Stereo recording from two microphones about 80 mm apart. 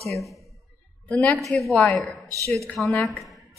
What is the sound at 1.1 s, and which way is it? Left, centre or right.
Speech, centre.